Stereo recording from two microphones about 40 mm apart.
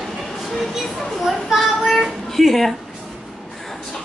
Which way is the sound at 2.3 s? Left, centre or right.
Centre.